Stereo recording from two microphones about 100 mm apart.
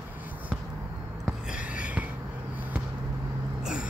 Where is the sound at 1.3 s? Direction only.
10° right (ahead or behind).